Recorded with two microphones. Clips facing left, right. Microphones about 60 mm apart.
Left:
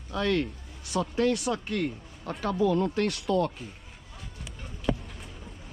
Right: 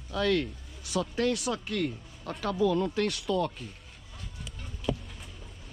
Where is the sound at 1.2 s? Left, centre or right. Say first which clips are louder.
Left 4 dB; left.